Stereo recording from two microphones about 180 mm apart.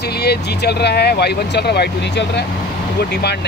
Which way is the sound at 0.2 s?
65° left (ahead or behind).